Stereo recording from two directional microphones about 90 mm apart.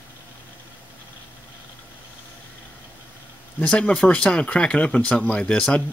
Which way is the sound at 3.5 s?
15° left (ahead or behind).